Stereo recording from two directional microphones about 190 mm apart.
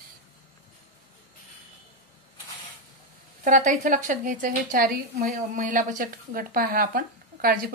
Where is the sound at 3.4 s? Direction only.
45° right (ahead or behind).